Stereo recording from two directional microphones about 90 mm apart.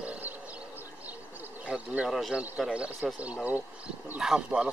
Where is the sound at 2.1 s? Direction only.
Centre (ahead or behind).